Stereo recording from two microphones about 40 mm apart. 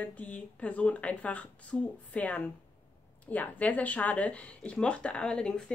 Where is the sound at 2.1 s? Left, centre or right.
Left.